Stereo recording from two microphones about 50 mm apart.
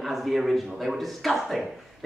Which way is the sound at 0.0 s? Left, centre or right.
Centre.